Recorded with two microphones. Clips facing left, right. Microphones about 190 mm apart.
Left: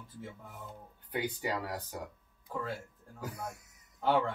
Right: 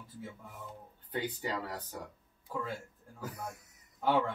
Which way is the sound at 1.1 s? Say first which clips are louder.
Left 1 dB; 10° left (ahead or behind).